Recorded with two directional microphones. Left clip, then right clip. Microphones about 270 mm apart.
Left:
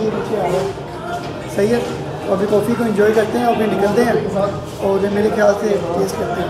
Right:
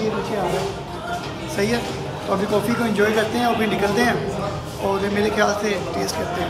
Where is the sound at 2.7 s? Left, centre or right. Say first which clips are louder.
Left 4 dB; centre.